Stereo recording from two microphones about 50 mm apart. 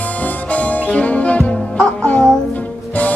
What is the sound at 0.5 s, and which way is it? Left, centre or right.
Music, left.